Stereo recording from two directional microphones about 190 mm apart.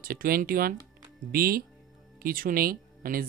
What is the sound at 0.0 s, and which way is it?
Speech, 50° right (ahead or behind).